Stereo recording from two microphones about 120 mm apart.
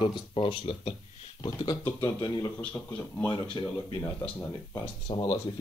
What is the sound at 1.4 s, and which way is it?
Speech, 40° left (ahead or behind).